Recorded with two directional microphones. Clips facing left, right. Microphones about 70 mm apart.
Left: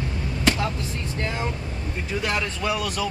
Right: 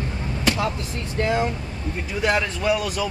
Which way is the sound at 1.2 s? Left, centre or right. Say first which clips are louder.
Right 7 dB; centre.